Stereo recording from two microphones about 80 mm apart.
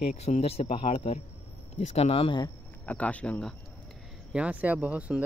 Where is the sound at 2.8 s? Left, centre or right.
Centre.